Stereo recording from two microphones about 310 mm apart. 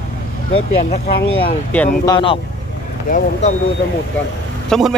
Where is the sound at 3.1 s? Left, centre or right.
Left.